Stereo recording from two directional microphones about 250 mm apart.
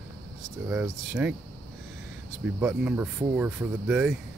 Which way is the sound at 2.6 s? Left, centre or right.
Centre.